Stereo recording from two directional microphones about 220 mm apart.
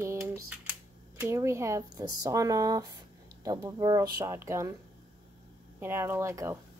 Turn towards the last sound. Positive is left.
turn(degrees=-10)  # may be behind; listen again after turning